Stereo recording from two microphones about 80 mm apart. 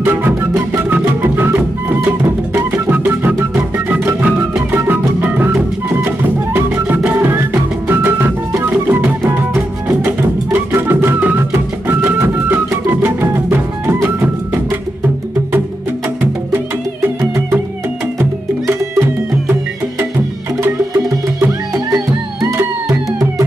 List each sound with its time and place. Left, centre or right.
0.0 s music: right
16.2 s music: right
18.7 s music: right
20.6 s music: right